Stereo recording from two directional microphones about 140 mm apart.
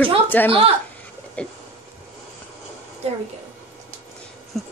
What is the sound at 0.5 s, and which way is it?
Speech, 40° right (ahead or behind).